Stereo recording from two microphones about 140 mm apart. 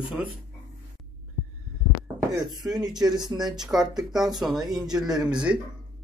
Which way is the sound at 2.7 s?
30° right (ahead or behind).